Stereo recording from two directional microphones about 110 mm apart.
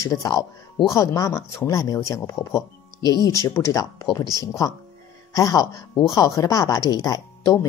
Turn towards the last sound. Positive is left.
turn(degrees=25)  # may be behind; listen again after turning